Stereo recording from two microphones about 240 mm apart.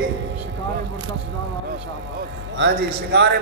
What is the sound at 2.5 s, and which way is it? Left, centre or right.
Speech, right.